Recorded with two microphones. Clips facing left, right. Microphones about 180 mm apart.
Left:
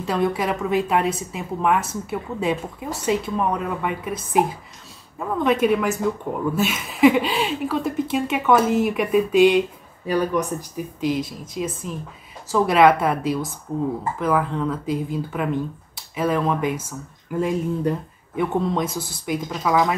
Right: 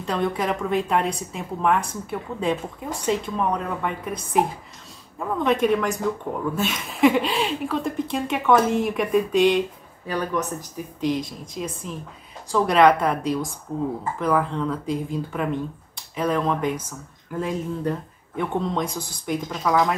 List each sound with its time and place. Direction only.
0.0 s a woman's voice: 5° left (ahead or behind)